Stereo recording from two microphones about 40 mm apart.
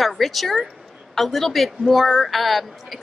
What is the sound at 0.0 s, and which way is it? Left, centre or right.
A woman's voice, centre.